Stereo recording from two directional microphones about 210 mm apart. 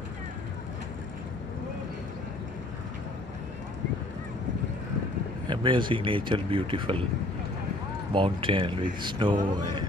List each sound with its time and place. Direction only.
5.5 s speech: 25° right (ahead or behind)
8.1 s speech: 25° right (ahead or behind)